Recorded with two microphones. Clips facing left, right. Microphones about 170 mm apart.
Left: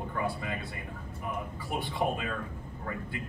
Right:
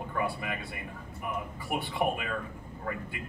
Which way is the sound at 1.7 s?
15° right (ahead or behind).